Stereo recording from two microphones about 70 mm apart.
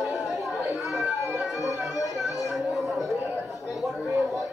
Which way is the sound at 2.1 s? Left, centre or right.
Centre.